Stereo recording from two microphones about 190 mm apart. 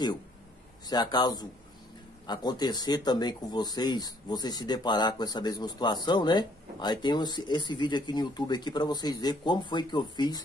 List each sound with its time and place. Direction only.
0.8 s speech: 20° left (ahead or behind)